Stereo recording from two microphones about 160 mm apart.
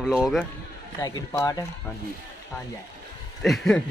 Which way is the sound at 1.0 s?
25° left (ahead or behind).